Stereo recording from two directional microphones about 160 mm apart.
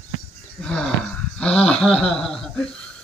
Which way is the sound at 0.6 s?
5° left (ahead or behind).